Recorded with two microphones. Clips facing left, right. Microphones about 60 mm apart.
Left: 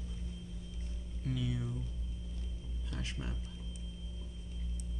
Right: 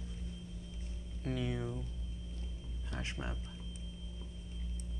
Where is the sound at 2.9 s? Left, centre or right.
Right.